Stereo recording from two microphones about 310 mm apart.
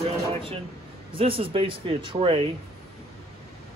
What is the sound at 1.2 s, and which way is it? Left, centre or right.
Speech, centre.